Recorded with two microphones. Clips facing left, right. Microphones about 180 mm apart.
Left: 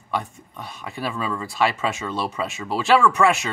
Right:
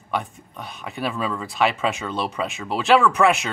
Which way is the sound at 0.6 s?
Centre (ahead or behind).